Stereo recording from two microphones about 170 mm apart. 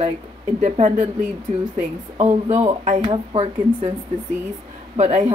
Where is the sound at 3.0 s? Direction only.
30° right (ahead or behind).